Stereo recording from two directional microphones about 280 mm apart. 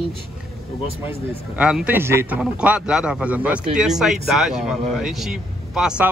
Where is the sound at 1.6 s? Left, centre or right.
Centre.